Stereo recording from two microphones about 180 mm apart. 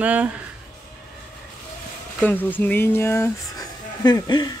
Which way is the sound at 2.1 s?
10° left (ahead or behind).